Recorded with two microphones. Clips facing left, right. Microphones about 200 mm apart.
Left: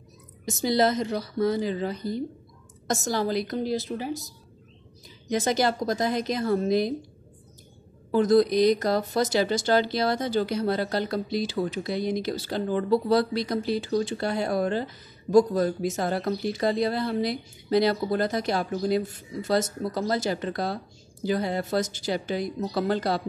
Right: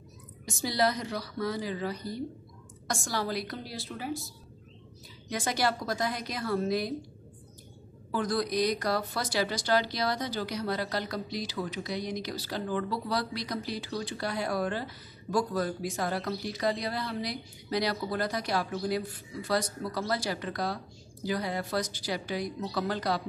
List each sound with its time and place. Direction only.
0.5 s speech: 20° left (ahead or behind)
5.3 s speech: 20° left (ahead or behind)
8.1 s speech: 20° left (ahead or behind)